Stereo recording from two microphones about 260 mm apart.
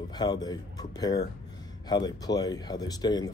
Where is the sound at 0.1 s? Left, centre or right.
Centre.